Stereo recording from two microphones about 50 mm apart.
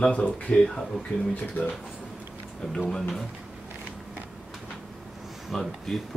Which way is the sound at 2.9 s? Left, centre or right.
Centre.